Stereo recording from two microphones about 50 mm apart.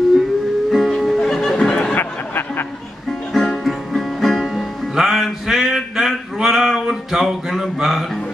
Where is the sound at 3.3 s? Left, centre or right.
Centre.